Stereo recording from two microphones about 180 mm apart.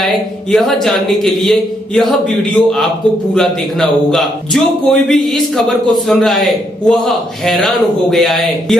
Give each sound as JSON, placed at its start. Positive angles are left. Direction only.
{"t": 0.0, "sound": "a man's voice", "side_deg": 0}